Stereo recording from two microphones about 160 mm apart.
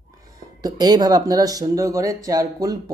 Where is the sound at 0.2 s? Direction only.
25° right (ahead or behind).